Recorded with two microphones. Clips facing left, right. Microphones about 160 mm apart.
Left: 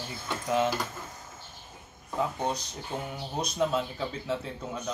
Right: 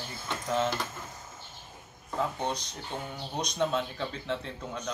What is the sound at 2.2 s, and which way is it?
Speech, 10° left (ahead or behind).